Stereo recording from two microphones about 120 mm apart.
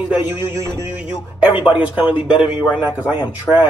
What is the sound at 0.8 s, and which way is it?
Speech, 15° right (ahead or behind).